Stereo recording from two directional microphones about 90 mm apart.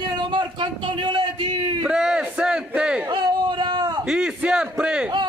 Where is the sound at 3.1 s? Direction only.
55° right (ahead or behind).